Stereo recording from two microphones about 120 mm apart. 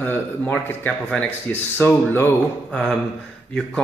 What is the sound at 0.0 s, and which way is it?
Speech, 15° left (ahead or behind).